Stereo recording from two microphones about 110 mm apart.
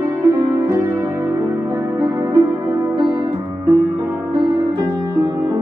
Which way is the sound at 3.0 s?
40° right (ahead or behind).